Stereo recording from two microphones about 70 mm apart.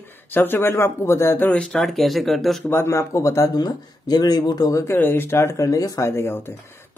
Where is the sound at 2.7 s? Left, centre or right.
Left.